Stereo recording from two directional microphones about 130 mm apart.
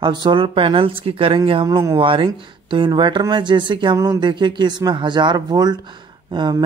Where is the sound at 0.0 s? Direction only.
35° right (ahead or behind).